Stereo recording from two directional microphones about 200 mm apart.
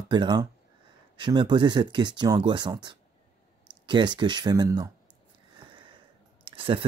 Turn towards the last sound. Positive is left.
turn(degrees=-25)  # may be behind; listen again after turning